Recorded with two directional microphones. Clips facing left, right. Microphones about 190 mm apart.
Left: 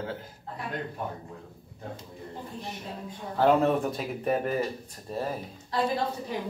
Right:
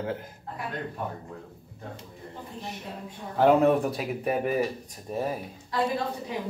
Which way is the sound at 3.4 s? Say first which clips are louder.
Right 2 dB; 10° right (ahead or behind).